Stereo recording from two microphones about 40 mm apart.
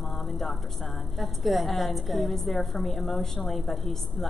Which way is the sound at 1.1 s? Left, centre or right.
Centre.